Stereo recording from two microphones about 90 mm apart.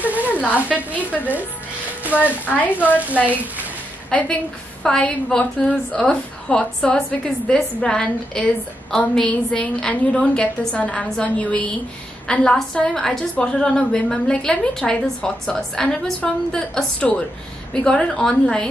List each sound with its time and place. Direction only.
0.0 s sizzle: 20° right (ahead or behind)
0.3 s sizzle: 15° left (ahead or behind)
2.0 s a woman's voice: 15° right (ahead or behind)
2.4 s speech: 20° left (ahead or behind)
3.1 s speech: 15° right (ahead or behind)
4.1 s a woman's voice: 15° left (ahead or behind)